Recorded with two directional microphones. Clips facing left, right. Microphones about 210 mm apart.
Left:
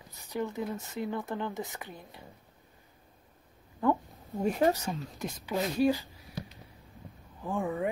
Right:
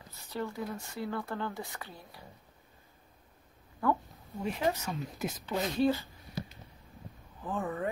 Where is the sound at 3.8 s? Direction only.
20° left (ahead or behind).